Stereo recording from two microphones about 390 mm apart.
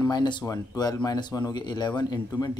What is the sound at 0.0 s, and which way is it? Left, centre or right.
Speech, centre.